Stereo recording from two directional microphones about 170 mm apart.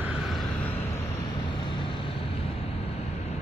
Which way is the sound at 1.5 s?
30° left (ahead or behind).